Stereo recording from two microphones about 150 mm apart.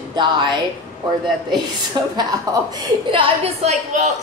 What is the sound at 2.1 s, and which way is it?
A woman's voice, 25° right (ahead or behind).